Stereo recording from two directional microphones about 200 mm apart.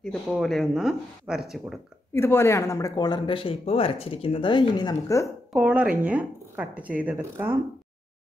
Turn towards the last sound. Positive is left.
turn(degrees=-10)  # may be behind; listen again after turning